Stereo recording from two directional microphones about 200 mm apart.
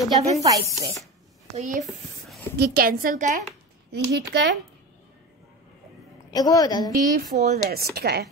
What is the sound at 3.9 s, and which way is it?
Speech, 60° right (ahead or behind).